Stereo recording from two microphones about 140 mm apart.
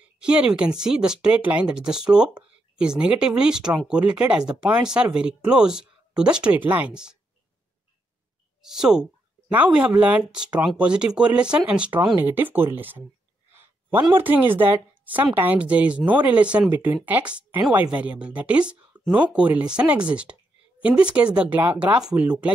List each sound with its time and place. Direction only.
0.2 s speech: 5° right (ahead or behind)
8.6 s speech: 5° right (ahead or behind)
13.5 s a sound: 15° right (ahead or behind)
14.1 s speech: 15° right (ahead or behind)